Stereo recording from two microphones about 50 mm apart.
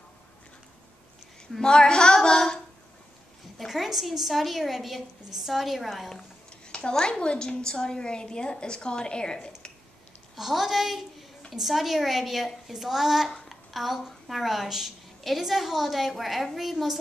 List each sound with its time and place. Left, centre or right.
1.6 s a woman's voice: centre
2.1 s a sound: centre
3.5 s a woman's voice: centre
6.7 s a woman's voice: centre
10.3 s a woman's voice: centre